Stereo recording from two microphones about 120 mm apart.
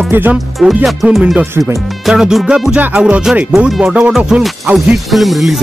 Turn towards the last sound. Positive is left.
turn(degrees=0)  # may be behind; listen again after turning